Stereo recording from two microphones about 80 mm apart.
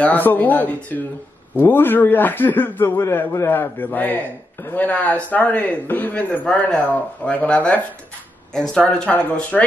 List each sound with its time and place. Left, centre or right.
0.0 s a man's voice: left